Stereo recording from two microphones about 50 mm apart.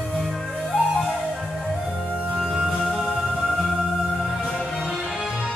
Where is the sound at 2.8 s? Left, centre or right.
Centre.